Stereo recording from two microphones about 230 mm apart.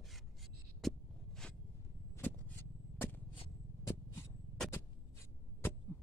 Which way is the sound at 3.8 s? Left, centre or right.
Centre.